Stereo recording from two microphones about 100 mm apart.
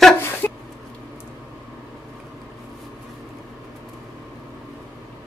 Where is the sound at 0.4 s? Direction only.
20° left (ahead or behind).